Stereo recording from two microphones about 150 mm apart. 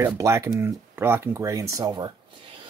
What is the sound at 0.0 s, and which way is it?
Speech, 20° right (ahead or behind).